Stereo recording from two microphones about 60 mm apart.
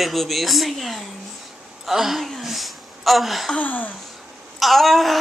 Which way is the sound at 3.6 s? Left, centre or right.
Left.